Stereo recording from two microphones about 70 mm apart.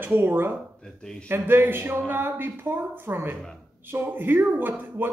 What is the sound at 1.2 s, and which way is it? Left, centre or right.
A woman's voice, right.